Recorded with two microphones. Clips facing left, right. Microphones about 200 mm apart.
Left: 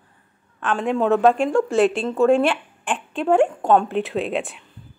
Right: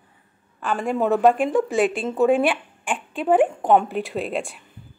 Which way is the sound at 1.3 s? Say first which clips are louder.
Left 1 dB; 20° right (ahead or behind).